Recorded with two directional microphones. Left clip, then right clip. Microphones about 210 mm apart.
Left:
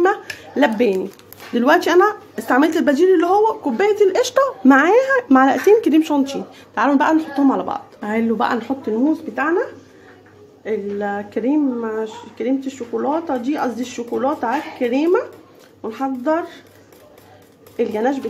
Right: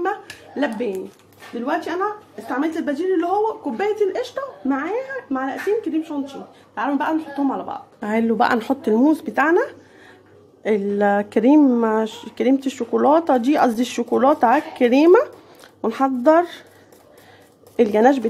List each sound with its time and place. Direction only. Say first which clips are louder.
0.0 s a sound: left 7 dB; 20° left (ahead or behind)
1.6 s a woman's voice: left 9 dB; 45° left (ahead or behind); by 4.2 s 15° left (ahead or behind)
4.2 s speech: left 10 dB; 35° left (ahead or behind)
6.7 s a woman's voice: left 6 dB; 20° left (ahead or behind)
8.0 s speech: right 2 dB; 30° right (ahead or behind); by 16.6 s 50° right (ahead or behind)
17.7 s speech: right 4 dB; 50° right (ahead or behind)